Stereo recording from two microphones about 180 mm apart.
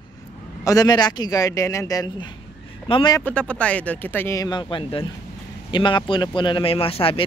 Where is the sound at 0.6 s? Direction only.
20° left (ahead or behind).